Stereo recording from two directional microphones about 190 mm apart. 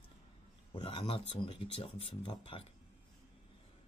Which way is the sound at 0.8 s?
30° left (ahead or behind).